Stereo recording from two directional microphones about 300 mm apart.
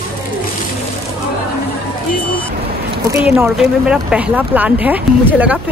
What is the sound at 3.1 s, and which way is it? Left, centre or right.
Speech, centre.